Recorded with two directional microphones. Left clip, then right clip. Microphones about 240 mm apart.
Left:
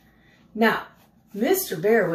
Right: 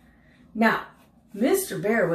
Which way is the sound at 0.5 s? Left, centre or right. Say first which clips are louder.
Left 1 dB; centre.